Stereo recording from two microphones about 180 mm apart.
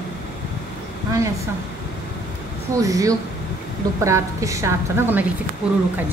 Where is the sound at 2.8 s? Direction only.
20° right (ahead or behind).